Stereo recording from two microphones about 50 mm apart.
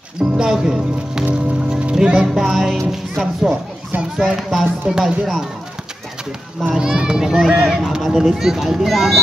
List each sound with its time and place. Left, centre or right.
0.2 s speech: centre
1.2 s music: centre
2.3 s a child's voice: centre
6.7 s a child's voice: centre